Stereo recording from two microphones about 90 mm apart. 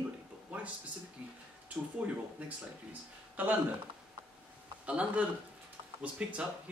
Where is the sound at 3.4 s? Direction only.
20° right (ahead or behind).